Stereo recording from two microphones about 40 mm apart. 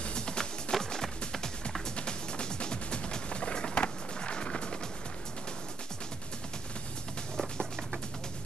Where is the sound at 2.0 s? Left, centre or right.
Left.